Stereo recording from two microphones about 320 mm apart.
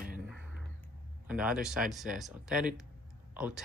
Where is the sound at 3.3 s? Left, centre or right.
Centre.